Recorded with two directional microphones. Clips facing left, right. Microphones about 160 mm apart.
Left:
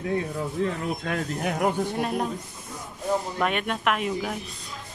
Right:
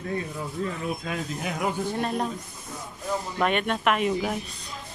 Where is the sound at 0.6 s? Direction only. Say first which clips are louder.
Left 4 dB; 75° left (ahead or behind).